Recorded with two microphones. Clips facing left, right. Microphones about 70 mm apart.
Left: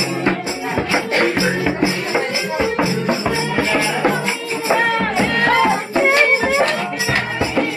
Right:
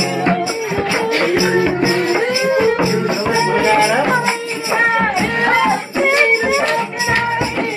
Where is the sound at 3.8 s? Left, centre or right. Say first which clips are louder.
Right 4 dB; right.